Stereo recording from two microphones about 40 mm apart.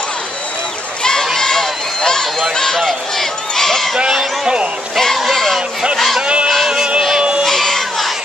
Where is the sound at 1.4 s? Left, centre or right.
Centre.